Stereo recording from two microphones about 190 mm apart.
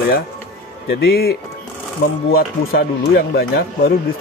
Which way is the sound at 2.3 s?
55° left (ahead or behind).